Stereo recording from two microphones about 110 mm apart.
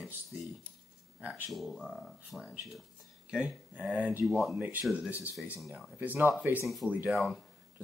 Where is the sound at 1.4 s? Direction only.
Centre (ahead or behind).